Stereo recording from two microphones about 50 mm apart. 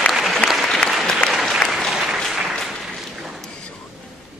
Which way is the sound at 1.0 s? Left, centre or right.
Centre.